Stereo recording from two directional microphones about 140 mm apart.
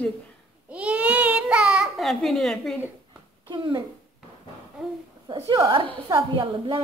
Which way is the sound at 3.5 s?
35° right (ahead or behind).